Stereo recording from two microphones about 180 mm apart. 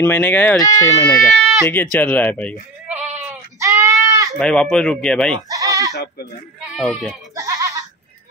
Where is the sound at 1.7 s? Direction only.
10° left (ahead or behind).